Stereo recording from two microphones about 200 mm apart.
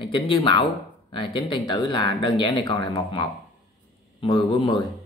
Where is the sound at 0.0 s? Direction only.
25° left (ahead or behind).